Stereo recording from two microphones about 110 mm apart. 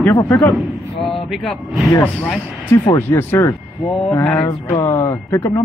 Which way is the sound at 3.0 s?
20° left (ahead or behind).